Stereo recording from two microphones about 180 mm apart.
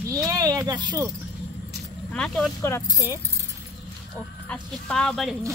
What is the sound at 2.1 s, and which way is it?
Speech, 5° left (ahead or behind).